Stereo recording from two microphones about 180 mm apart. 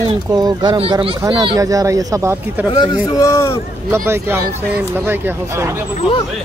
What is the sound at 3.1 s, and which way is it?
Speech, 15° left (ahead or behind).